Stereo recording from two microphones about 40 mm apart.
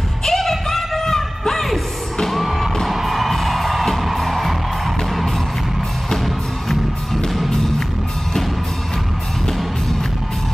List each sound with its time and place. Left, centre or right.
0.2 s music: centre